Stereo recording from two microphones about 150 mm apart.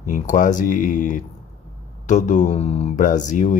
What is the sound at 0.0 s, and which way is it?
Speech, 60° left (ahead or behind).